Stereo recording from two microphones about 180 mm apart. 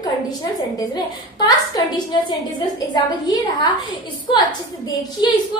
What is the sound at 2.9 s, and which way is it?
A woman's voice, 25° left (ahead or behind).